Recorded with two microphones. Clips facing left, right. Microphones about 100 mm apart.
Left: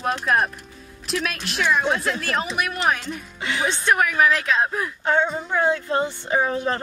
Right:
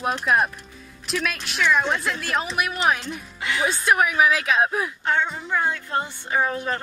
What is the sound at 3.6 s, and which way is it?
A woman's voice, 5° right (ahead or behind).